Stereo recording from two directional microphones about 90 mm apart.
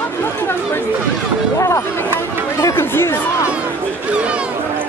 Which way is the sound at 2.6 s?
30° left (ahead or behind).